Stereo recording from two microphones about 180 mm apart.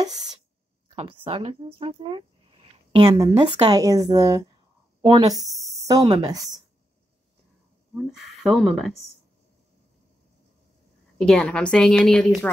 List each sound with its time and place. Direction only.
0.9 s speech: 30° right (ahead or behind)
8.2 s a woman's voice: centre (ahead or behind)
11.1 s a woman's voice: 5° left (ahead or behind)